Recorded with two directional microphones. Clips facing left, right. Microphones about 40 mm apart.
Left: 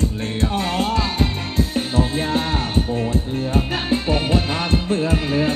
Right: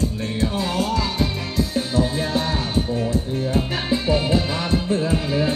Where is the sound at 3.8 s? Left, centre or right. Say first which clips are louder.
Even; left.